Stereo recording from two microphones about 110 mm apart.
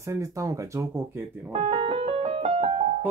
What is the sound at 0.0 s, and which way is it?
Speech, 30° right (ahead or behind).